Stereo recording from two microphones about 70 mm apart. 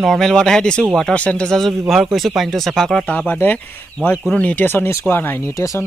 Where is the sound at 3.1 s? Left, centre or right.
Left.